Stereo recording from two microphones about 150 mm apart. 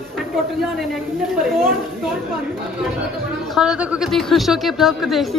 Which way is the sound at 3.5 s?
5° right (ahead or behind).